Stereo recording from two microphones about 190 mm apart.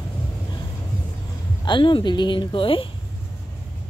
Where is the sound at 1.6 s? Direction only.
25° left (ahead or behind).